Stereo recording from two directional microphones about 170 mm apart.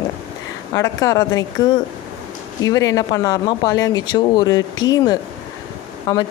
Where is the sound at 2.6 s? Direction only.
20° left (ahead or behind).